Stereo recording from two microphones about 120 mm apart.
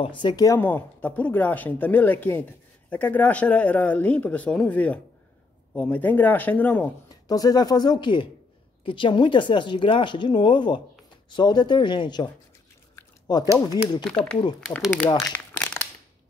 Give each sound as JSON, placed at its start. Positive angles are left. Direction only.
{"t": 0.0, "sound": "speech", "side_deg": 40}
{"t": 0.6, "sound": "speech", "side_deg": 15}
{"t": 7.1, "sound": "speech", "side_deg": 30}
{"t": 12.9, "sound": "a sound", "side_deg": 30}
{"t": 13.6, "sound": "speech", "side_deg": 35}
{"t": 14.0, "sound": "speech", "side_deg": 10}
{"t": 15.1, "sound": "crumpling", "side_deg": 15}